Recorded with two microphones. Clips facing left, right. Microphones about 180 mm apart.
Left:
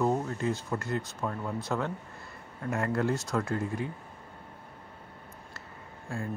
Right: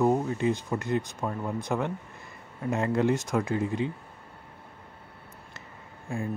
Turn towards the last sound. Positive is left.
turn(degrees=-15)  # may be behind; listen again after turning